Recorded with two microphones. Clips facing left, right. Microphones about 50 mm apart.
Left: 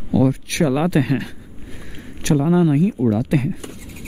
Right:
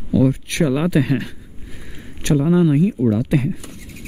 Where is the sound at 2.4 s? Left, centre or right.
Centre.